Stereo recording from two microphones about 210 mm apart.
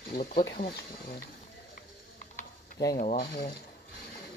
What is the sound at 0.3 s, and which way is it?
Speech, 45° left (ahead or behind).